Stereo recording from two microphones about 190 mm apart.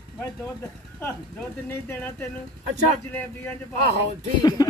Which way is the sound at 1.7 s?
10° left (ahead or behind).